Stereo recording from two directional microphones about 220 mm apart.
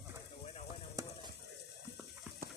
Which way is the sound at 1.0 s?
15° right (ahead or behind).